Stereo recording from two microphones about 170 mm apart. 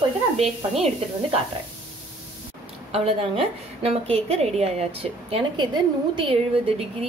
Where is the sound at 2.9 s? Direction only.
35° right (ahead or behind).